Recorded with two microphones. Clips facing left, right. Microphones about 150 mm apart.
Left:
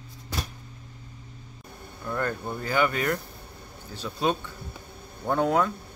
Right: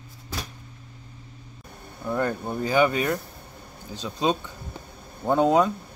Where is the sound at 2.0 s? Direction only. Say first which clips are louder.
Right 3 dB; 15° right (ahead or behind).